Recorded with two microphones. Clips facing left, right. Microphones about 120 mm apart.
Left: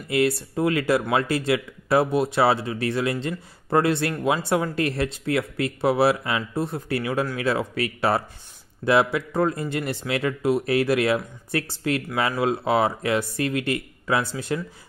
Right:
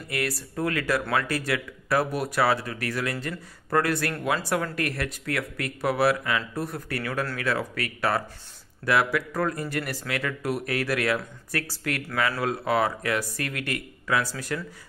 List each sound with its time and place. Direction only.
0.4 s speech: 25° left (ahead or behind)